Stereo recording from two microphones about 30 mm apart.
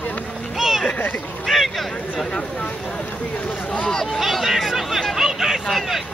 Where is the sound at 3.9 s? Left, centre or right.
Centre.